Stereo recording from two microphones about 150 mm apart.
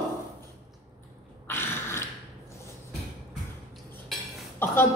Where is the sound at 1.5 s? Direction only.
15° left (ahead or behind).